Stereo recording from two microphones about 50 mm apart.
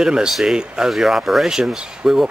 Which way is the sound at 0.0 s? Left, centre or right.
Centre.